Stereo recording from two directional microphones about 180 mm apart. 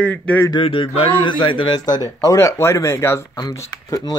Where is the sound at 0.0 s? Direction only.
10° left (ahead or behind).